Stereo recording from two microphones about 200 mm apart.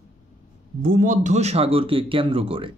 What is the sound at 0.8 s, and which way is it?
Speech, 45° right (ahead or behind).